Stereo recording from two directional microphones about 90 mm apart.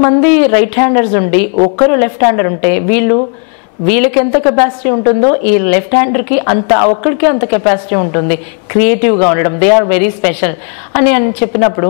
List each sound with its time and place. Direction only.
0.0 s a woman's voice: 15° left (ahead or behind)